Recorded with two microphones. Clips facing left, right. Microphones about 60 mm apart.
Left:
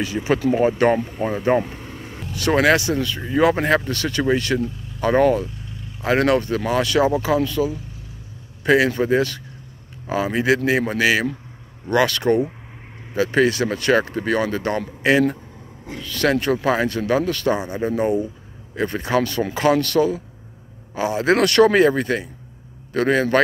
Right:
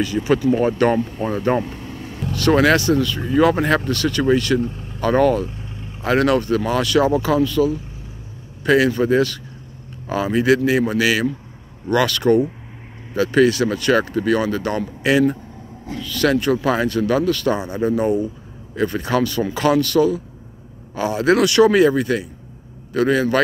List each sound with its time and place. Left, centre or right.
0.0 s speech: left
4.6 s speech: right
5.0 s speech: left
5.4 s vehicle: right
6.0 s speech: left
10.0 s speech: centre
10.3 s speech: left
21.4 s speech: left